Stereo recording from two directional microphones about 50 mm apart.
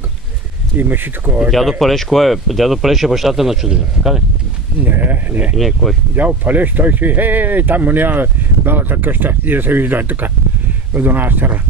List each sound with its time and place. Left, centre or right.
0.7 s speech: right
1.5 s speech: centre
4.8 s speech: right
5.6 s speech: centre
6.1 s speech: right